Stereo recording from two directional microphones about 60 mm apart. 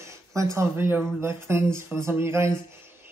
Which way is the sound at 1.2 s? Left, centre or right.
Right.